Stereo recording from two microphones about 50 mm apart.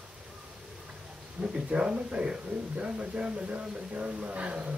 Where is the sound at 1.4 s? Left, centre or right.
Right.